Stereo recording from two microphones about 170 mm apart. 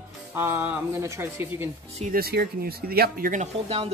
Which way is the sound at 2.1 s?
65° right (ahead or behind).